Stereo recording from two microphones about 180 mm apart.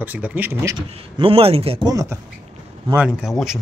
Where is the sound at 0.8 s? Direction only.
30° right (ahead or behind).